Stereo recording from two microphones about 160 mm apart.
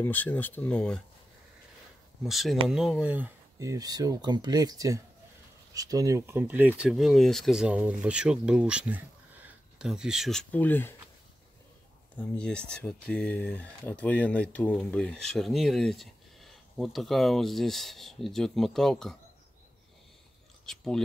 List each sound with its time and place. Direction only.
0.0 s speech: 10° left (ahead or behind)
2.2 s speech: centre (ahead or behind)
3.5 s speech: 20° right (ahead or behind); by 10.4 s centre (ahead or behind)
10.5 s speech: 10° left (ahead or behind)
12.2 s speech: 5° left (ahead or behind)
20.6 s speech: 5° left (ahead or behind)